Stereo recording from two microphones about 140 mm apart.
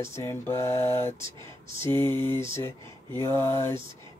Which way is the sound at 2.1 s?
35° right (ahead or behind).